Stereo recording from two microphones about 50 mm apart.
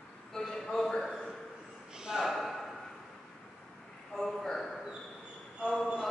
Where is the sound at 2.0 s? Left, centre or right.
Centre.